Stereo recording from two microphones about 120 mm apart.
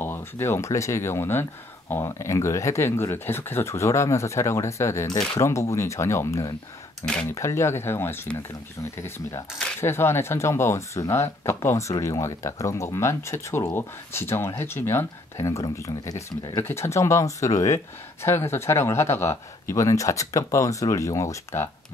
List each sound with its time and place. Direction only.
0.0 s speech: 20° left (ahead or behind)
9.8 s speech: 20° left (ahead or behind)